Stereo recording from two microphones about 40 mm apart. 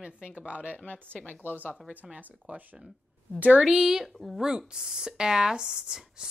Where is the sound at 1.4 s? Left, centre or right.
Left.